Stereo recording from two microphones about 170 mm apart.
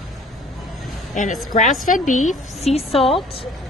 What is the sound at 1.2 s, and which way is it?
Speech, 50° left (ahead or behind).